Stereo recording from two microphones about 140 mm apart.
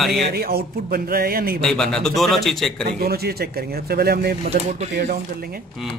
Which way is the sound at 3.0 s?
90° right.